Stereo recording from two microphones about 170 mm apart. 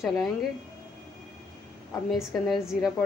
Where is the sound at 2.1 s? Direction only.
Centre (ahead or behind).